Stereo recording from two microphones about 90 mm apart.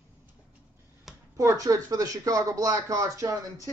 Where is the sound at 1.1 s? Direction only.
5° right (ahead or behind).